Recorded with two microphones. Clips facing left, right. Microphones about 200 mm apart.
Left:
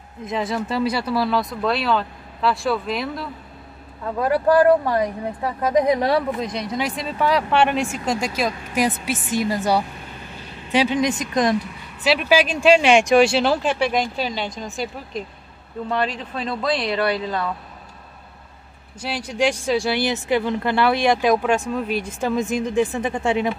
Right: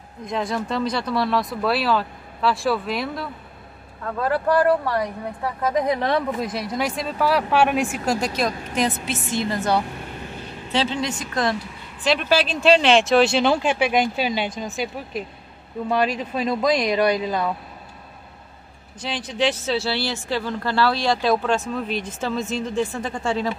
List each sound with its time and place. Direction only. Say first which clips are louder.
0.2 s speech: left 1 dB; 5° left (ahead or behind)
4.0 s speech: left 3 dB; 15° left (ahead or behind)
6.4 s speech: even; 5° right (ahead or behind); by 11.5 s 20° left (ahead or behind)
12.0 s a man's voice: left 2 dB; 5° left (ahead or behind); by 17.5 s 15° right (ahead or behind)
18.9 s speech: left 2 dB; 10° left (ahead or behind)